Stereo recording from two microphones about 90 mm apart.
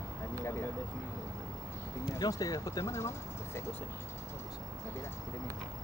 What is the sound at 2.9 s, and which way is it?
Speech, 30° left (ahead or behind).